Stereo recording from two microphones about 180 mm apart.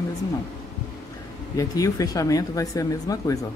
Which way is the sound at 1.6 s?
20° left (ahead or behind).